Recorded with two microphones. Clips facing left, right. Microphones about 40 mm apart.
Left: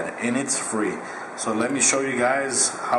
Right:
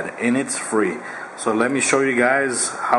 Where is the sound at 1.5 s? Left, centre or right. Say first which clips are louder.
Right 5 dB; right.